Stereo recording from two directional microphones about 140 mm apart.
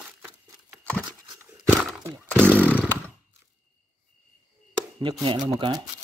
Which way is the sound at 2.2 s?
10° left (ahead or behind).